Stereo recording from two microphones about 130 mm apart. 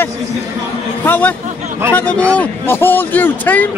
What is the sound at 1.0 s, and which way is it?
A man's voice, 15° left (ahead or behind).